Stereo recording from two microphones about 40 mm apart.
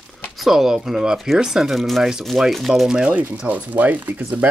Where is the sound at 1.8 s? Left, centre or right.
Centre.